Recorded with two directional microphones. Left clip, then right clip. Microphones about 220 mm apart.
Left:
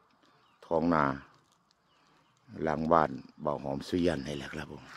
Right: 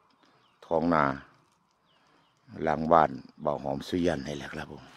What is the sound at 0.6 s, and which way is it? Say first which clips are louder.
Speech: right 3 dB; 5° right (ahead or behind).